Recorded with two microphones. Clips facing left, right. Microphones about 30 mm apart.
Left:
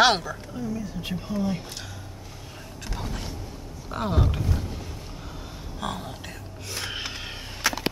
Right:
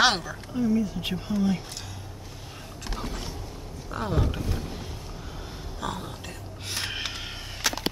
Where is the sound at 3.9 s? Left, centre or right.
Centre.